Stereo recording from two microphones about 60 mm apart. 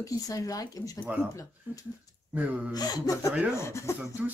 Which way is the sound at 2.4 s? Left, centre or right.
Right.